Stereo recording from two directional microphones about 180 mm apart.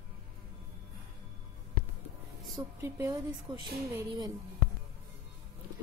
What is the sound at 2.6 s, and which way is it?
A woman's voice, 15° right (ahead or behind).